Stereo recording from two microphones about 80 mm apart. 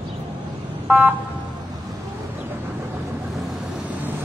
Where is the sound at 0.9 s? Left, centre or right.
Right.